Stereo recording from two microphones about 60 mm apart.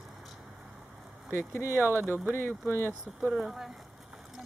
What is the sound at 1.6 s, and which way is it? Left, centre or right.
Speech, right.